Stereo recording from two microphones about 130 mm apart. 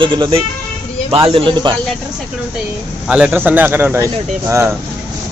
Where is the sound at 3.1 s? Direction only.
10° right (ahead or behind).